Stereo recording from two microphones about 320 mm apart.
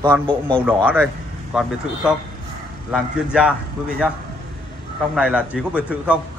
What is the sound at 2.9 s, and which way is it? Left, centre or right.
Speech, centre.